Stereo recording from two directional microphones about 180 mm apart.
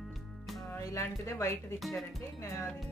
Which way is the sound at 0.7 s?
15° left (ahead or behind).